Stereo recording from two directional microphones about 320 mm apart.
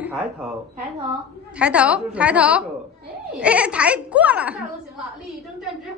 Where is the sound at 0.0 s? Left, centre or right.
Centre.